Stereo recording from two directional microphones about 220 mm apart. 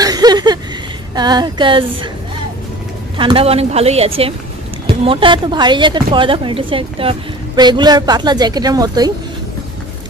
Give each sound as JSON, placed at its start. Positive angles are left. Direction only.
{"t": 0.0, "sound": "a sound", "side_deg": -15}
{"t": 1.1, "sound": "speech", "side_deg": -20}
{"t": 3.2, "sound": "speech", "side_deg": -25}